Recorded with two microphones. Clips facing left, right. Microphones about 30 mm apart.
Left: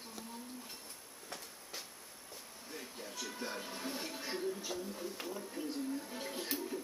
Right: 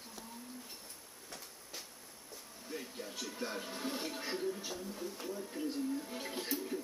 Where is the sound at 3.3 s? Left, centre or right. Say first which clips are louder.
Right 3 dB; centre.